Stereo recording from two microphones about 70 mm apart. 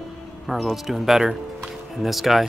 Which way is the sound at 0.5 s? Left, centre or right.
Centre.